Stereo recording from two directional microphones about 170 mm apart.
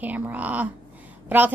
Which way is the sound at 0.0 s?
10° right (ahead or behind).